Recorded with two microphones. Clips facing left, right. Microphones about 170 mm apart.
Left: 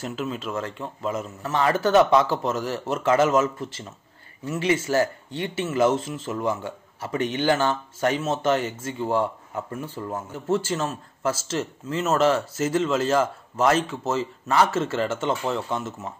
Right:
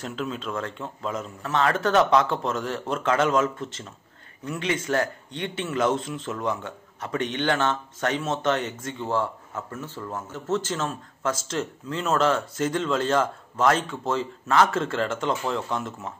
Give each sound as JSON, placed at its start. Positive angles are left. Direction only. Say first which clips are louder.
{"t": 0.0, "sound": "a man's voice", "louder": "left 1 dB", "side_deg": 5}